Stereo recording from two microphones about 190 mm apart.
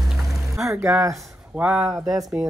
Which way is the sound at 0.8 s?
5° right (ahead or behind).